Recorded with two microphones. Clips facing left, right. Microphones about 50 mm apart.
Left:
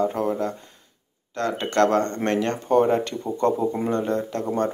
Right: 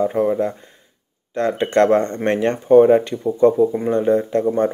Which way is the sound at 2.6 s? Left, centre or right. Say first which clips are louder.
Right 9 dB; centre.